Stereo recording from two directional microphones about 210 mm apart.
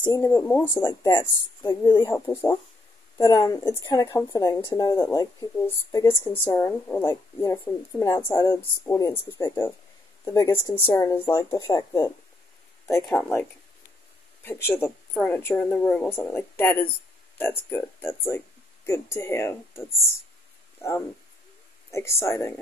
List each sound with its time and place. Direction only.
0.0 s a woman's voice: 15° left (ahead or behind)
13.0 s a woman's voice: 5° left (ahead or behind)
21.9 s a woman's voice: 15° left (ahead or behind)